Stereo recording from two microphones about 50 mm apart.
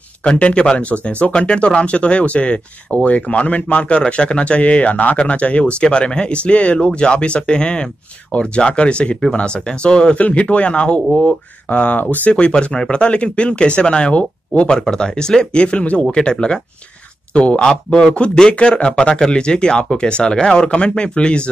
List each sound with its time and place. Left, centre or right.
0.2 s speech: left
12.3 s speech: left
14.7 s speech: centre